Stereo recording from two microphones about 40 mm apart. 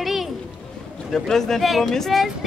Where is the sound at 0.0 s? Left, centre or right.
Centre.